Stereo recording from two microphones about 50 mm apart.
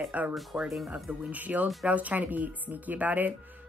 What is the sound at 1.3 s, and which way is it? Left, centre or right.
Speech, right.